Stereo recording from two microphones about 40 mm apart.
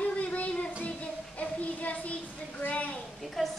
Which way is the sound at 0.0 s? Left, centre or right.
Left.